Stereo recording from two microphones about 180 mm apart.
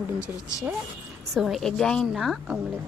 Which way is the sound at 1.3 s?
Centre (ahead or behind).